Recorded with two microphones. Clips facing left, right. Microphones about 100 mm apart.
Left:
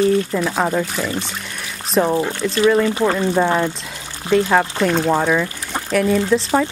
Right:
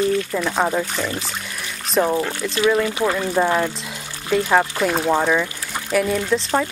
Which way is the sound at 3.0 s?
20° left (ahead or behind).